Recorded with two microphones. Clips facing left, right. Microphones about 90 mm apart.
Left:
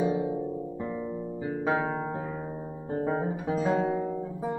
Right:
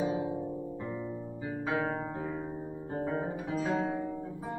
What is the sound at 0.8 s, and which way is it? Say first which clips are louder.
Music: left 4 dB; 20° left (ahead or behind).